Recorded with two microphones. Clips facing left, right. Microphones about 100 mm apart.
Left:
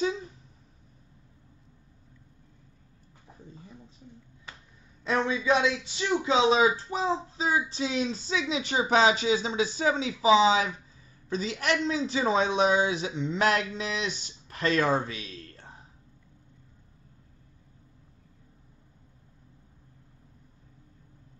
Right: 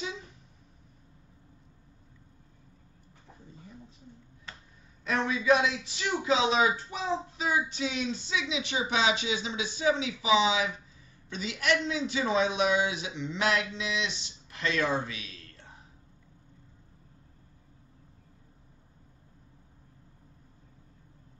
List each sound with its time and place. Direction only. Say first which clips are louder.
5.0 s a man's voice: left 1 dB; 25° left (ahead or behind)